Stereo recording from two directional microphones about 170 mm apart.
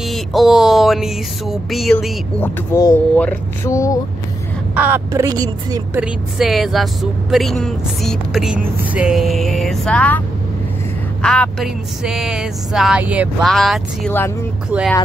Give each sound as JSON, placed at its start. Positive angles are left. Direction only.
{"t": 0.0, "sound": "speech", "side_deg": 0}
{"t": 2.4, "sound": "speech", "side_deg": 15}
{"t": 4.7, "sound": "a woman's voice", "side_deg": -10}
{"t": 5.9, "sound": "speech", "side_deg": 0}
{"t": 11.2, "sound": "speech", "side_deg": 5}
{"t": 13.4, "sound": "speech", "side_deg": 0}